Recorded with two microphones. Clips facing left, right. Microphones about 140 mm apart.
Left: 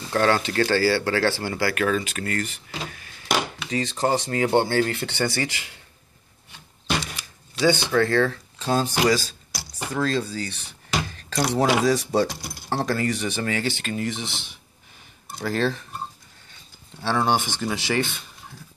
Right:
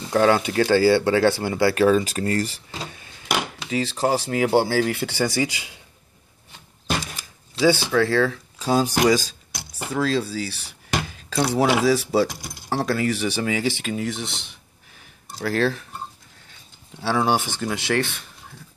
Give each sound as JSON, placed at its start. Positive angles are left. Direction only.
{"t": 0.0, "sound": "speech", "side_deg": -15}
{"t": 3.7, "sound": "speech", "side_deg": -5}
{"t": 7.6, "sound": "speech", "side_deg": -5}
{"t": 9.9, "sound": "speech", "side_deg": -5}
{"t": 11.1, "sound": "a sound", "side_deg": -10}
{"t": 11.8, "sound": "speech", "side_deg": -5}
{"t": 12.3, "sound": "speech", "side_deg": -15}
{"t": 12.6, "sound": "speech", "side_deg": -5}
{"t": 17.0, "sound": "speech", "side_deg": -5}